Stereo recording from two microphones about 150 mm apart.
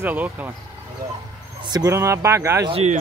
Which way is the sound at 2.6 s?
40° right (ahead or behind).